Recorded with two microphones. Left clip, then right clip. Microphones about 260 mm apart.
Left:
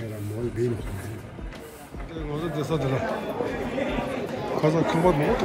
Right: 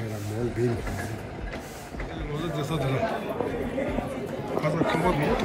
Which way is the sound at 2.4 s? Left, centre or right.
Centre.